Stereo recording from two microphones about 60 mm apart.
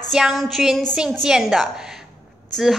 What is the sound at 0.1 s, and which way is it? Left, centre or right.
A woman's voice, centre.